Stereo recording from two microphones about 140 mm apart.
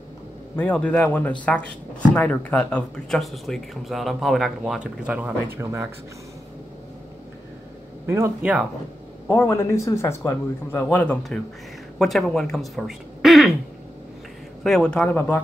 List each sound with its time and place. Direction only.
0.6 s a man's voice: 10° left (ahead or behind); by 5.9 s 20° right (ahead or behind)
8.1 s a man's voice: 15° right (ahead or behind)
9.3 s a man's voice: 20° left (ahead or behind); by 13.6 s centre (ahead or behind)
14.6 s a man's voice: 5° left (ahead or behind)